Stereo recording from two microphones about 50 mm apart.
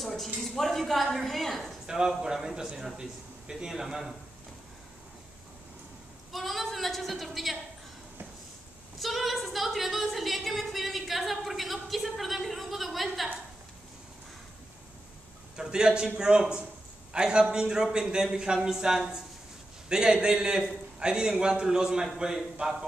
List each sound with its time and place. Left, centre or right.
0.0 s a woman's voice: centre
1.9 s a man's voice: centre
6.3 s a woman's voice: centre
9.0 s a woman's voice: centre
15.5 s a man's voice: centre